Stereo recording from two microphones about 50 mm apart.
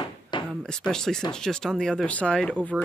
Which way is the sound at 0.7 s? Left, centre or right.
Centre.